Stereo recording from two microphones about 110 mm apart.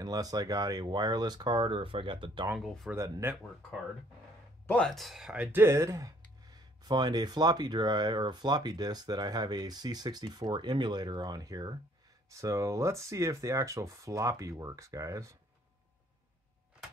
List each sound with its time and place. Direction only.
0.0 s speech: 35° right (ahead or behind)
2.5 s speech: centre (ahead or behind)
3.0 s speech: 25° right (ahead or behind)
4.8 s speech: centre (ahead or behind); by 15.3 s 30° right (ahead or behind)